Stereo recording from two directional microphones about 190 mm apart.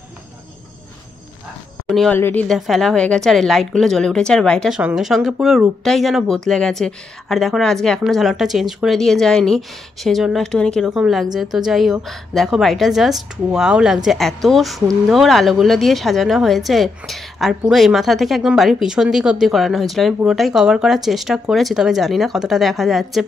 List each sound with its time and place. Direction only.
2.0 s a woman's voice: 10° left (ahead or behind)